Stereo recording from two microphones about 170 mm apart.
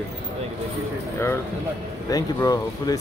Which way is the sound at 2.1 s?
20° left (ahead or behind).